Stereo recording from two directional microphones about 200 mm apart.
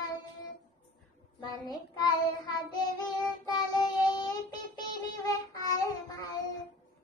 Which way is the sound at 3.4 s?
20° left (ahead or behind).